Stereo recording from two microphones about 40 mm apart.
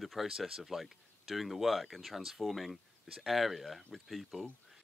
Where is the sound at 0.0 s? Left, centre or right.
Centre.